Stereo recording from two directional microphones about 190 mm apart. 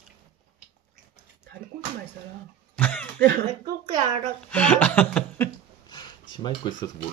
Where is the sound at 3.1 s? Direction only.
60° right (ahead or behind).